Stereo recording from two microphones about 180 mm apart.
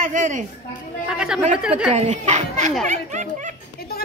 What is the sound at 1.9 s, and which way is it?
Speech, 40° right (ahead or behind).